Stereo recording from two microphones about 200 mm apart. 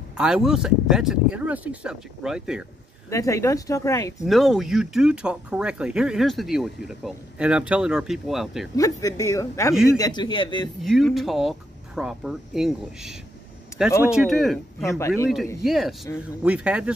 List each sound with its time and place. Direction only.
0.2 s speech: 5° right (ahead or behind)
3.1 s speech: 15° left (ahead or behind)
4.2 s speech: centre (ahead or behind)
8.7 s a man's voice: 15° left (ahead or behind)
10.8 s speech: centre (ahead or behind)
13.7 s a sound: 15° left (ahead or behind)
14.0 s speech: centre (ahead or behind)
14.8 s speech: 15° left (ahead or behind)
15.6 s speech: centre (ahead or behind)